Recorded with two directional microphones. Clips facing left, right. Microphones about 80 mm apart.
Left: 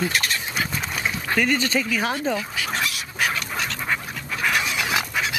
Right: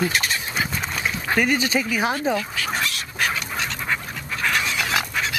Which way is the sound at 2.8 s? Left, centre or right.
Centre.